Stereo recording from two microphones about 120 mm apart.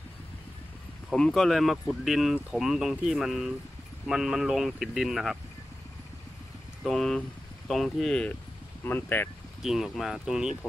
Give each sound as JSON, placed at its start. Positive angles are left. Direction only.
{"t": 1.1, "sound": "speech", "side_deg": 5}
{"t": 6.8, "sound": "speech", "side_deg": 5}
{"t": 9.6, "sound": "speech", "side_deg": -5}